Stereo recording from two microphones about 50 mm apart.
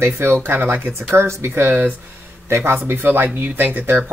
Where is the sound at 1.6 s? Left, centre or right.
Right.